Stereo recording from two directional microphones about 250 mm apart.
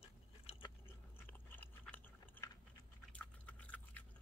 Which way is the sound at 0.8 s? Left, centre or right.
Centre.